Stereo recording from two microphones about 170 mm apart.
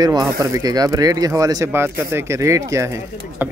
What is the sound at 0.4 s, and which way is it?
Speech, 20° right (ahead or behind).